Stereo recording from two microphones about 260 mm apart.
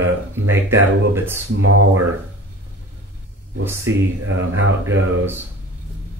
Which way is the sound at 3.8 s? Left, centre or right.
Right.